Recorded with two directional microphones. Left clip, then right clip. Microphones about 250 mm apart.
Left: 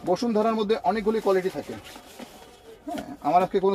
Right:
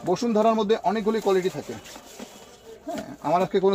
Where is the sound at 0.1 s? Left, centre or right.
Right.